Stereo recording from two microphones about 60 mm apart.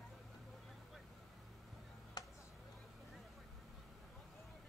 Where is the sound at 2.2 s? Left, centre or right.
Left.